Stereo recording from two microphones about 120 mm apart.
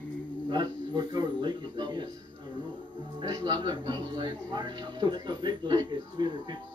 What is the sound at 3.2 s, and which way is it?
Speech, 30° right (ahead or behind).